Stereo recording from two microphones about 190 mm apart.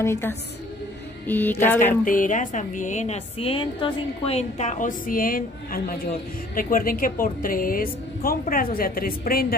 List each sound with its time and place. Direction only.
0.0 s speech: 15° left (ahead or behind)
2.0 s a woman's voice: 45° left (ahead or behind)